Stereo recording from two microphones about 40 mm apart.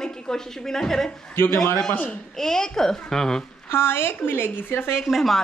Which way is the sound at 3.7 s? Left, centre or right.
Left.